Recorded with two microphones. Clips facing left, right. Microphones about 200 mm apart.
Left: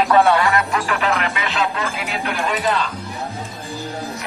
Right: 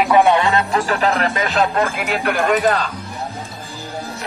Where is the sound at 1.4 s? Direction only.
50° right (ahead or behind).